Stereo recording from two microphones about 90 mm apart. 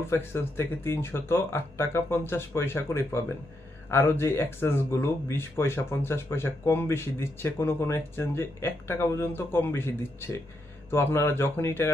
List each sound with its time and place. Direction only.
0.0 s speech: 30° left (ahead or behind)